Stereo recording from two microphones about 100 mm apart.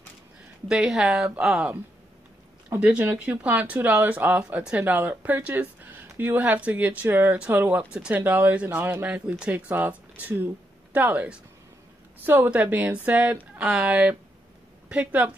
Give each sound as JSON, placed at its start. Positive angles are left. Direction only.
{"t": 0.7, "sound": "speech", "side_deg": -5}
{"t": 2.8, "sound": "speech", "side_deg": -15}